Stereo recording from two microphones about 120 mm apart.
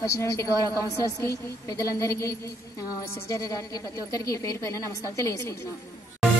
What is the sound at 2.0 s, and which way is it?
Speech, 25° left (ahead or behind).